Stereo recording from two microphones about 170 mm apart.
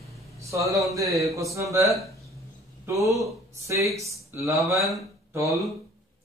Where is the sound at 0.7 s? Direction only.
20° right (ahead or behind).